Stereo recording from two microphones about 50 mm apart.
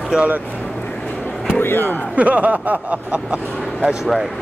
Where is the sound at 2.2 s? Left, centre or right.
Right.